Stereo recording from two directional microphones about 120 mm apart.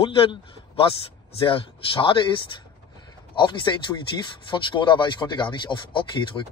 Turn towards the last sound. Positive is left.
turn(degrees=40)  # may be behind; listen again after turning